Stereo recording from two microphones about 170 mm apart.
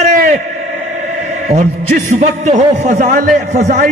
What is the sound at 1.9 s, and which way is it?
A man's voice, 45° right (ahead or behind).